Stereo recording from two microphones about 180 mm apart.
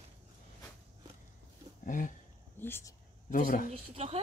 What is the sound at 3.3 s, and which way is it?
Speech, 50° left (ahead or behind).